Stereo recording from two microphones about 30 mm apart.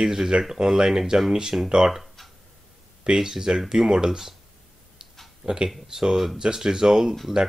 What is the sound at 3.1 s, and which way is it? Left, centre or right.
Speech, centre.